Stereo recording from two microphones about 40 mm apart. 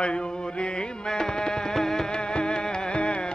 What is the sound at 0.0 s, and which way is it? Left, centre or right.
Music, left.